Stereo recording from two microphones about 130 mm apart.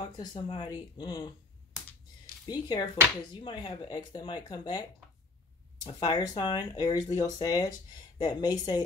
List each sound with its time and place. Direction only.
0.2 s speech: 35° left (ahead or behind)
2.4 s speech: 35° left (ahead or behind)
5.9 s speech: 30° left (ahead or behind)